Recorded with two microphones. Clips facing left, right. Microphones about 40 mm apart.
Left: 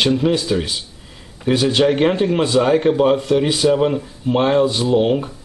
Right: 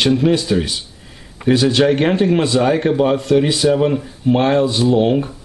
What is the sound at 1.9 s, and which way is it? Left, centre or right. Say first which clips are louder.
A man's voice: right 1 dB; centre.